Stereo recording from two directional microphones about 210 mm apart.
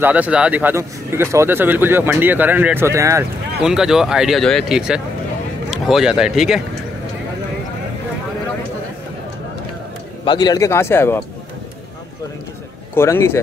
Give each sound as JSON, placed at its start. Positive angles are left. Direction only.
{"t": 0.0, "sound": "speech", "side_deg": -5}
{"t": 3.6, "sound": "a man's voice", "side_deg": -5}
{"t": 10.2, "sound": "speech", "side_deg": 20}
{"t": 12.9, "sound": "speech", "side_deg": 10}